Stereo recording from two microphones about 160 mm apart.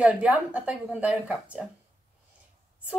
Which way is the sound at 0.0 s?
5° right (ahead or behind).